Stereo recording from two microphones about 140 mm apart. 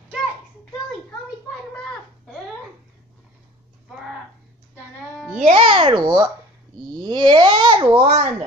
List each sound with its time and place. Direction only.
5.4 s a child's voice: 40° right (ahead or behind)